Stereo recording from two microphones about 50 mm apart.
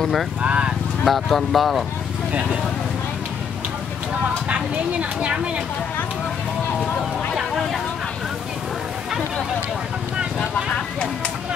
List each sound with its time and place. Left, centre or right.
0.0 s speech: centre
0.4 s speech: right
1.0 s speech: centre
5.2 s speech: right
7.3 s a sound: centre
10.5 s a sound: centre